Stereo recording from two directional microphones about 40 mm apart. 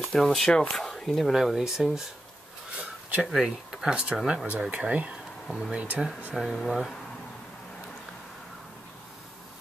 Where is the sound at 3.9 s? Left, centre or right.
Right.